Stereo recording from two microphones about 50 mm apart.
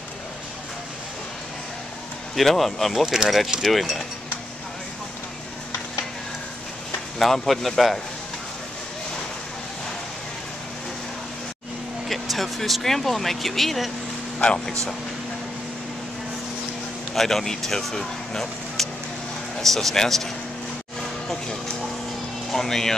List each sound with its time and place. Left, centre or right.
2.3 s speech: centre
7.2 s speech: centre
12.1 s speech: centre
14.4 s speech: left
17.1 s speech: centre
22.5 s speech: centre